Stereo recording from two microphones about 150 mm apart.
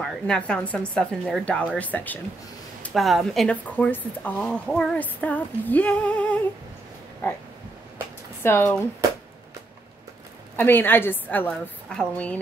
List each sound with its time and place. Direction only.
0.0 s speech: 5° left (ahead or behind)
1.8 s female singing: 10° left (ahead or behind)
2.8 s speech: centre (ahead or behind)
4.2 s female singing: 10° left (ahead or behind)
8.4 s speech: 15° left (ahead or behind)
10.5 s female singing: 15° left (ahead or behind)